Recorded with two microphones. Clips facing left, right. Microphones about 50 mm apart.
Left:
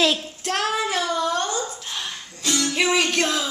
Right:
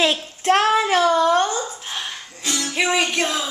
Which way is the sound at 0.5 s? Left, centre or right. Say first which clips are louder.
Right 7 dB; right.